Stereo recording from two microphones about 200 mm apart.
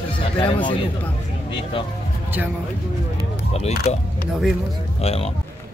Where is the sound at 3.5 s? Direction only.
30° left (ahead or behind).